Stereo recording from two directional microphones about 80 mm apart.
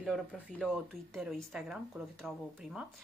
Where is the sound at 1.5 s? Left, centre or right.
Centre.